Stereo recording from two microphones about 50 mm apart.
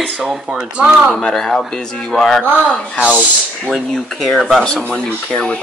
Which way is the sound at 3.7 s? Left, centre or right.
Centre.